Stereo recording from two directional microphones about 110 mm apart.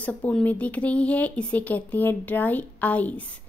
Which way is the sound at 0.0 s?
15° left (ahead or behind).